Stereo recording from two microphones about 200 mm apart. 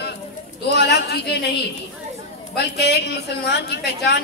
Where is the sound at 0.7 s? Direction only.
55° left (ahead or behind).